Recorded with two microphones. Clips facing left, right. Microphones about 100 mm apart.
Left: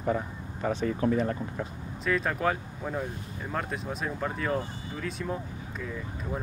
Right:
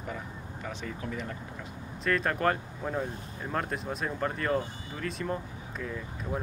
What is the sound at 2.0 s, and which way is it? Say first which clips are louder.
Speech: even; centre (ahead or behind).